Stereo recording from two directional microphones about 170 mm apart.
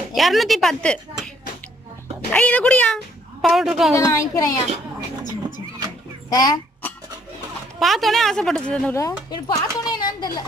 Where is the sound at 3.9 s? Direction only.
15° left (ahead or behind).